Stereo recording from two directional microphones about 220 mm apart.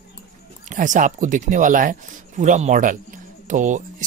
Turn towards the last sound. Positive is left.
turn(degrees=-35)  # may be behind; listen again after turning